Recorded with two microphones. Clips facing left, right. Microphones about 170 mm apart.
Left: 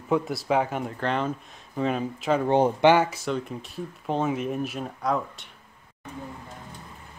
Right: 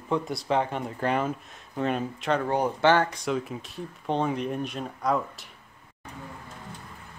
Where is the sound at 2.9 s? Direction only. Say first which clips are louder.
Left 2 dB; 5° left (ahead or behind).